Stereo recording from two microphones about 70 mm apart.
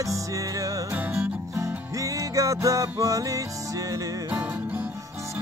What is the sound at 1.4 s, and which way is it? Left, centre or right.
Music, right.